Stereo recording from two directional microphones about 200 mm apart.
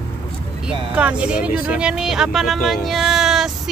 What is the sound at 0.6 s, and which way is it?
Speech, 5° right (ahead or behind).